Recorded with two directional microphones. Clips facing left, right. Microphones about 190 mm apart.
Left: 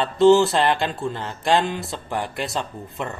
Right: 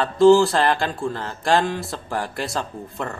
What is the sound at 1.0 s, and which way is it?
Speech, 20° left (ahead or behind).